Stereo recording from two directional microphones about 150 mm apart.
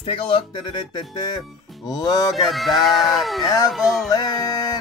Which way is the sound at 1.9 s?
25° left (ahead or behind).